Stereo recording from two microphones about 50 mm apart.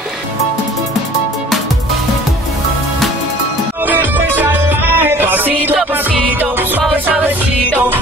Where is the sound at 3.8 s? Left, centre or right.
Right.